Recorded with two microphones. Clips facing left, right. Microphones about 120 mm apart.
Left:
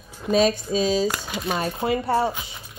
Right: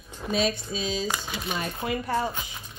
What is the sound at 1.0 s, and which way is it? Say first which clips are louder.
Speech: left 5 dB; centre (ahead or behind).